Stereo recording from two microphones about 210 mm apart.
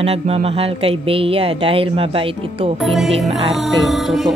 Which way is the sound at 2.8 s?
Centre (ahead or behind).